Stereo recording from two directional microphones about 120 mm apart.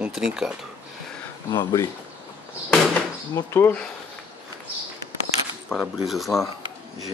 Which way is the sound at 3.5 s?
20° left (ahead or behind).